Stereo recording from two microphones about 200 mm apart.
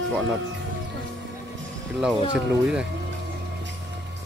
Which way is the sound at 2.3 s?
5° right (ahead or behind).